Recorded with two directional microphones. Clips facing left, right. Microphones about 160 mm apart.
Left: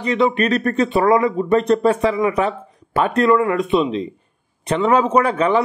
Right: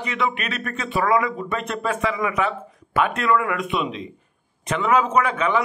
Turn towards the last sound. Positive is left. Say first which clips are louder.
# left 5 dB
turn(degrees=35)  # may be behind; listen again after turning